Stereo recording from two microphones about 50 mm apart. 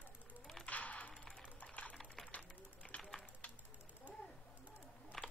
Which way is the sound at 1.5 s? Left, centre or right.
Left.